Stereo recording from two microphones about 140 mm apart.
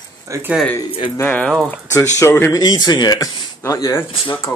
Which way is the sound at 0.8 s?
40° left (ahead or behind).